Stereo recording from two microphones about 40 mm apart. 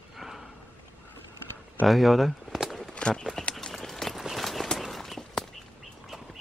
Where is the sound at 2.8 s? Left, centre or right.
Left.